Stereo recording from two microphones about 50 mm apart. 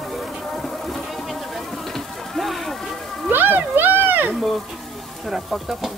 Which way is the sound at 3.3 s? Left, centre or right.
Right.